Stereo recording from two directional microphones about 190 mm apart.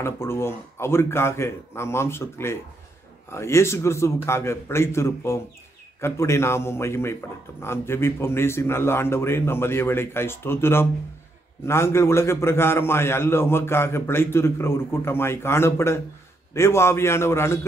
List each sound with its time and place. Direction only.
0.0 s a man's voice: 15° left (ahead or behind)